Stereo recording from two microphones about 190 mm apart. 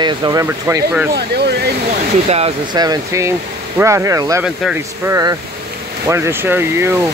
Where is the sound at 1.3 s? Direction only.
60° right (ahead or behind).